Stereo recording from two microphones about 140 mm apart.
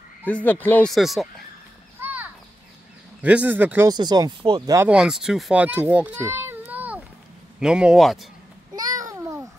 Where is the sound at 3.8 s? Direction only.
30° right (ahead or behind).